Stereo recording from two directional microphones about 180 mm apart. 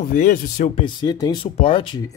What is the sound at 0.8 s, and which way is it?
Speech, 25° left (ahead or behind).